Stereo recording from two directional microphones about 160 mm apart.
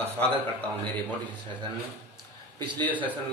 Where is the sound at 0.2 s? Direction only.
10° left (ahead or behind).